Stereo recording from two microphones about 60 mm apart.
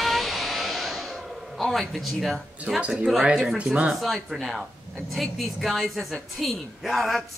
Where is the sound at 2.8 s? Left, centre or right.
Right.